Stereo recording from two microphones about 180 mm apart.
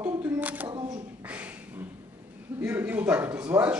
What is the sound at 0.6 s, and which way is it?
Speech, 25° right (ahead or behind).